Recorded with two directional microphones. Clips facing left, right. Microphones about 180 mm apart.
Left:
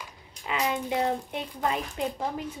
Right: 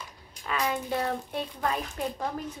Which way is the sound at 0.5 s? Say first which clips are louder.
Left 1 dB; 20° left (ahead or behind).